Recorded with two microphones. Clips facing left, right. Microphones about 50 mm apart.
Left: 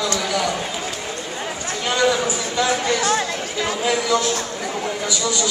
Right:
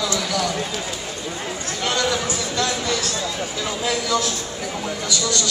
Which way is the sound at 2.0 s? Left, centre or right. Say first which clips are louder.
Left 4 dB; centre.